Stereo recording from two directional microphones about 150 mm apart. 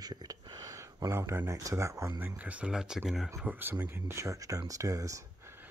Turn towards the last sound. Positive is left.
turn(degrees=-20)  # may be behind; listen again after turning